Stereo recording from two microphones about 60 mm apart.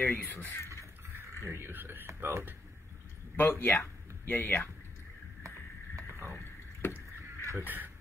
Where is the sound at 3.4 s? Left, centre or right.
Left.